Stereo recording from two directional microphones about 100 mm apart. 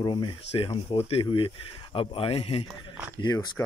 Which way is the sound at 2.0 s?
65° left (ahead or behind).